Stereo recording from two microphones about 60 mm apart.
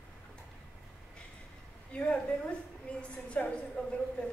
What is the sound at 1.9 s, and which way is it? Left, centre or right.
A woman's voice, centre.